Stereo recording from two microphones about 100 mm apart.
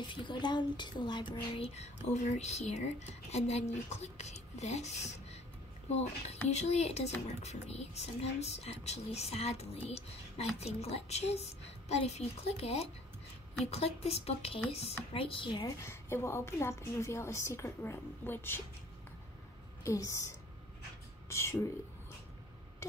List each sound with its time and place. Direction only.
0.0 s a woman's voice: 50° left (ahead or behind)
1.6 s speech: 90° left
15.1 s speech: 65° left (ahead or behind)
15.6 s a woman's voice: 25° left (ahead or behind)
19.8 s a woman's voice: 30° left (ahead or behind)